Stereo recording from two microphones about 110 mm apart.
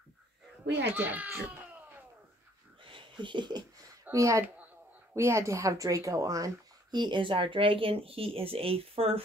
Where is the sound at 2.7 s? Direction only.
50° right (ahead or behind).